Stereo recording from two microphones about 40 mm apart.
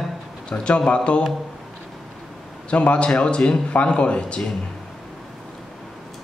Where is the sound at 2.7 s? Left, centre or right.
Left.